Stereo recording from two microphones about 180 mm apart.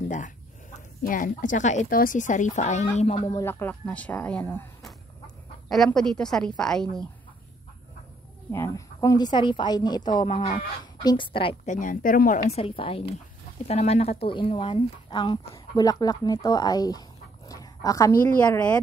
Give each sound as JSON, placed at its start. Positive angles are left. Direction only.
{"t": 1.0, "sound": "speech", "side_deg": 50}
{"t": 3.4, "sound": "a woman's voice", "side_deg": 10}
{"t": 8.5, "sound": "speech", "side_deg": 15}
{"t": 11.6, "sound": "speech", "side_deg": 45}
{"t": 17.5, "sound": "dog", "side_deg": 20}
{"t": 18.5, "sound": "speech", "side_deg": 10}